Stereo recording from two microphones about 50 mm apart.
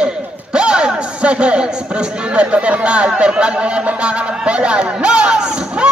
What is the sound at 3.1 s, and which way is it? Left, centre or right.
Speech, centre.